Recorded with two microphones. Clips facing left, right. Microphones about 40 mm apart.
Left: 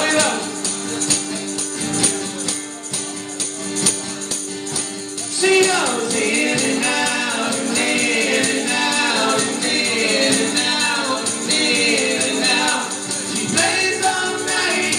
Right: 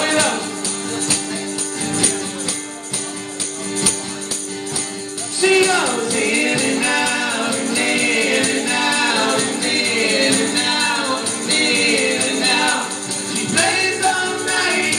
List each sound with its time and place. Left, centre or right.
0.0 s music: centre
5.4 s music: centre